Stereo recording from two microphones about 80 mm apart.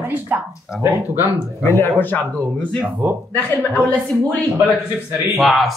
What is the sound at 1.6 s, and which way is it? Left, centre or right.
Speech, left.